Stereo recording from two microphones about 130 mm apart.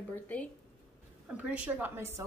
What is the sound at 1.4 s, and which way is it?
Speech, 10° right (ahead or behind).